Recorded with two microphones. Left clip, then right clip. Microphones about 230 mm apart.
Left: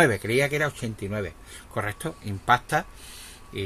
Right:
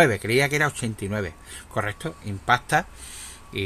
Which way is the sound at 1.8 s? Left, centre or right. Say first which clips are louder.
Right 1 dB; centre.